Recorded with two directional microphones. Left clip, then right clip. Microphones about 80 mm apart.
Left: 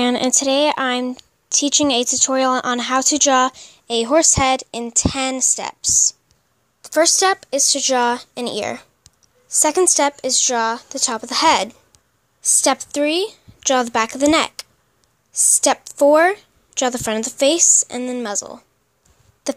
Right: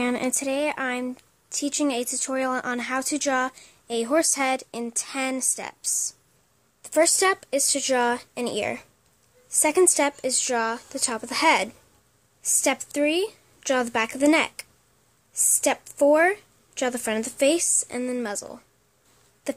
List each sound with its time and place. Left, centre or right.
0.0 s a woman's voice: left
15.6 s a woman's voice: left